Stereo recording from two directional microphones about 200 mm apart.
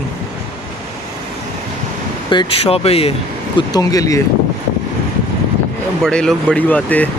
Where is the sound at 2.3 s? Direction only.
30° left (ahead or behind).